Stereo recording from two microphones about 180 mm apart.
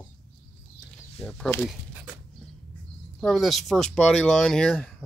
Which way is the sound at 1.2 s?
5° left (ahead or behind).